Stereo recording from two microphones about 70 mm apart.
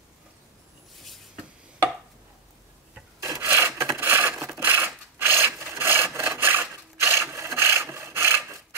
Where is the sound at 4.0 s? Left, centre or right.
Right.